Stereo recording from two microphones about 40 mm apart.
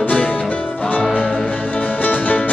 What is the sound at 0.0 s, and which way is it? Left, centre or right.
Music, left.